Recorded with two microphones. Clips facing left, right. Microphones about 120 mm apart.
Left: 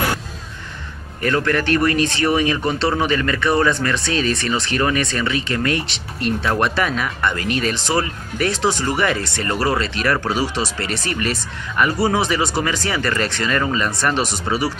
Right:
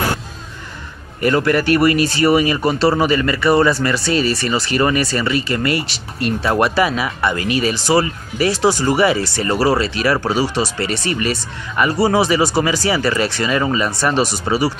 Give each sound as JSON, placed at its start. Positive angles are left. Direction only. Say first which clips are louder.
{"t": 1.2, "sound": "speech", "louder": "right 4 dB", "side_deg": -10}